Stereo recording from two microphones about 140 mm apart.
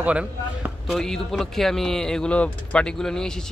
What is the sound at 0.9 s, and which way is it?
Speech, 5° left (ahead or behind).